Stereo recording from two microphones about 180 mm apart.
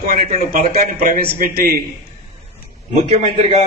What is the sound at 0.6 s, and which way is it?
A man's voice, 55° right (ahead or behind).